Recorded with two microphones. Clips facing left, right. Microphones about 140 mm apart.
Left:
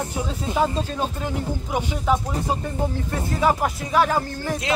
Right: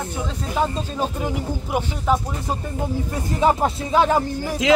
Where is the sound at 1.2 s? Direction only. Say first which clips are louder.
Right 1 dB; 10° right (ahead or behind).